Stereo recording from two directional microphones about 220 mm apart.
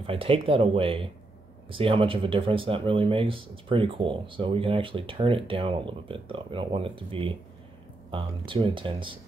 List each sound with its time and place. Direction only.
0.0 s speech: 25° right (ahead or behind)